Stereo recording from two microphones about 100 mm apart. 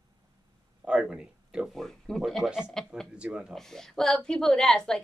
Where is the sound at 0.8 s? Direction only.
5° right (ahead or behind).